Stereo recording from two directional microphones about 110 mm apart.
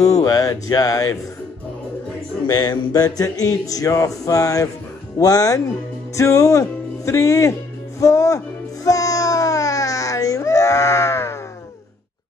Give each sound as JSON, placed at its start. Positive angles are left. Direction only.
{"t": 0.2, "sound": "speech", "side_deg": 35}
{"t": 2.4, "sound": "music", "side_deg": 40}
{"t": 8.0, "sound": "speech", "side_deg": 30}
{"t": 8.8, "sound": "a sound", "side_deg": 30}